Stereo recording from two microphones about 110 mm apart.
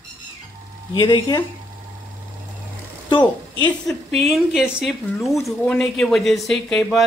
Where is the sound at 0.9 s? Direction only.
45° left (ahead or behind).